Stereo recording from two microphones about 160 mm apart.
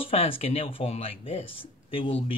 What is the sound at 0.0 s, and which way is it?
Speech, 35° left (ahead or behind).